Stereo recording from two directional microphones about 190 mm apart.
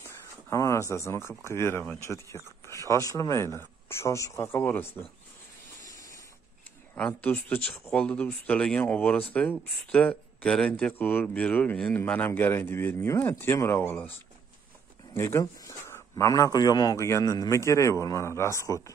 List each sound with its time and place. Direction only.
0.5 s speech: 15° left (ahead or behind)
7.0 s speech: 5° left (ahead or behind)
15.1 s speech: 15° left (ahead or behind)